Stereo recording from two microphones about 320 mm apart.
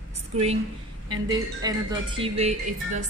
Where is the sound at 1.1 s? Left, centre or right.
Centre.